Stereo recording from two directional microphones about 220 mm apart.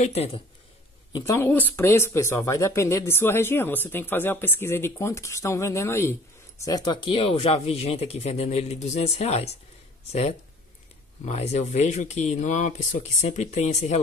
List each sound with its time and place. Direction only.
0.0 s speech: 30° left (ahead or behind)
1.1 s speech: 15° left (ahead or behind); by 13.9 s 30° left (ahead or behind)